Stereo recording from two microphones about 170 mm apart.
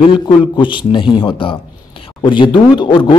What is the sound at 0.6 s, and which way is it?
Speech, 30° left (ahead or behind).